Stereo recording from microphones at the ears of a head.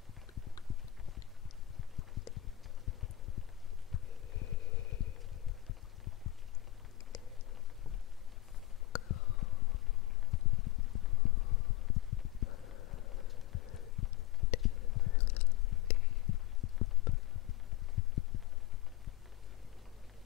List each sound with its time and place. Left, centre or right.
0.3 s clip-clop: left
3.9 s heart sounds: left
8.9 s a sound: left